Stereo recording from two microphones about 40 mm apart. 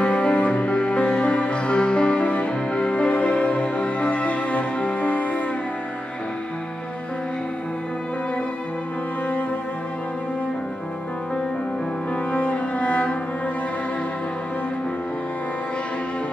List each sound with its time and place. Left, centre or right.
0.0 s music: left
12.3 s cello: left